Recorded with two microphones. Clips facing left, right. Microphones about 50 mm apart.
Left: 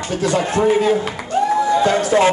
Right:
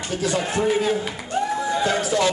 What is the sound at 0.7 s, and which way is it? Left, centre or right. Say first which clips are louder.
Speech: left 6 dB; centre.